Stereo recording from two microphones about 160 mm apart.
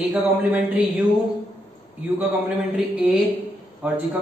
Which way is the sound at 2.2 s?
5° right (ahead or behind).